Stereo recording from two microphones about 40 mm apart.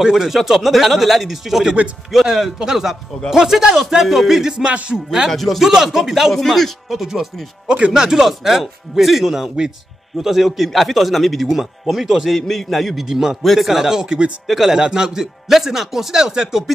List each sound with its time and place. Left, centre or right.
0.1 s a man's voice: centre
5.3 s a man's voice: centre
5.6 s speech: centre
6.3 s speech: centre
6.9 s a man's voice: centre
12.3 s a man's voice: centre
13.1 s speech: centre
13.4 s a man's voice: centre
13.7 s speech: centre
14.5 s speech: centre
14.8 s speech: centre